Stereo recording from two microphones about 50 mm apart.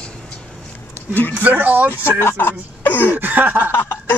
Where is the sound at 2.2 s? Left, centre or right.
Left.